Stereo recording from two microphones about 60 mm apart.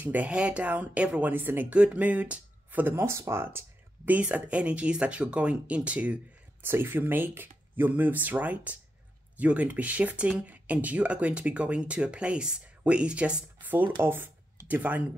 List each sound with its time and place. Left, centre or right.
0.0 s speech: right
0.3 s speech: centre
1.2 s speech: right
1.7 s speech: centre; by 3.4 s right
3.4 s speech: right
6.6 s speech: right; by 13.7 s centre
13.7 s speech: right
14.0 s a sound: right
14.7 s speech: right